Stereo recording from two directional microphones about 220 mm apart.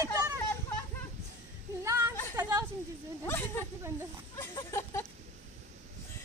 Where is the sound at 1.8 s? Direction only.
10° right (ahead or behind).